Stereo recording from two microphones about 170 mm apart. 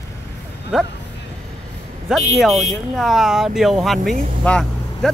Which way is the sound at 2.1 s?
Centre (ahead or behind).